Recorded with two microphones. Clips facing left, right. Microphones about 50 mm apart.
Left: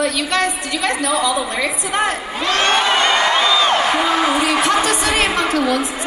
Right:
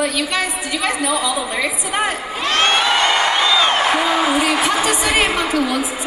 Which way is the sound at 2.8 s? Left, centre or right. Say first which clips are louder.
Even; left.